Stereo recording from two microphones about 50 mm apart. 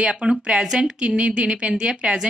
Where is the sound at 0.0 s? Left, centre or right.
Centre.